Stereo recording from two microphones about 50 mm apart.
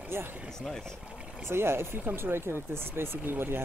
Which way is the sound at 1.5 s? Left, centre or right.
Right.